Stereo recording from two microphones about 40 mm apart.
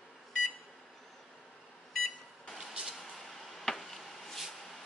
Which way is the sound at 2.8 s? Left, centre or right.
Centre.